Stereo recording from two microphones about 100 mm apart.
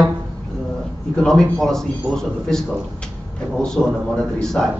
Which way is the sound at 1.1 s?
5° left (ahead or behind).